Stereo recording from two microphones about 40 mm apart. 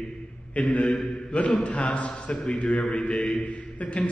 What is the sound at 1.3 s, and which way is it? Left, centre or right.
Mantra, left.